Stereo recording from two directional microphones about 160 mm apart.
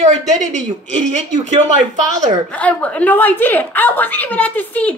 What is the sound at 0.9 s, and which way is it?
Speech, 45° right (ahead or behind).